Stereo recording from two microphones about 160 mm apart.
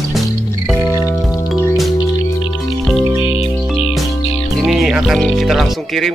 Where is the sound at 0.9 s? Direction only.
20° left (ahead or behind).